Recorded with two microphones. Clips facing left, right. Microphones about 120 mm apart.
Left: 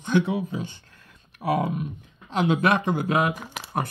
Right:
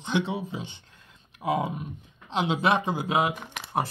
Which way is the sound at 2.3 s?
25° right (ahead or behind).